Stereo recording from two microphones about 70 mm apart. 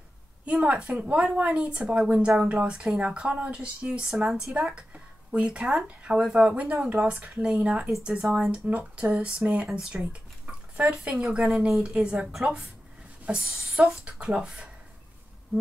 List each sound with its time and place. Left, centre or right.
0.5 s a woman's voice: centre
5.9 s a woman's voice: right
8.6 s a woman's voice: right
9.7 s speech: centre
10.8 s a woman's voice: centre